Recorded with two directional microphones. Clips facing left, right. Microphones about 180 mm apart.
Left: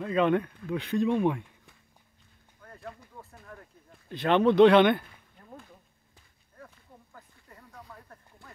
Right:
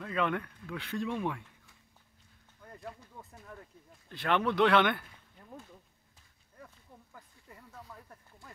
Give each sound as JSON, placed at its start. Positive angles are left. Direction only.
{"t": 0.0, "sound": "speech", "side_deg": 25}
{"t": 2.6, "sound": "a sound", "side_deg": -15}
{"t": 4.1, "sound": "speech", "side_deg": 20}